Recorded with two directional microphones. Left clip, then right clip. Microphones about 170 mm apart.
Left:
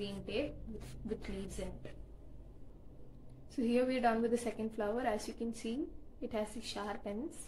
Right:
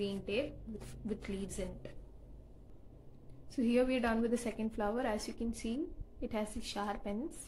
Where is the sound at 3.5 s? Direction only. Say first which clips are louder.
Right 1 dB; 20° right (ahead or behind).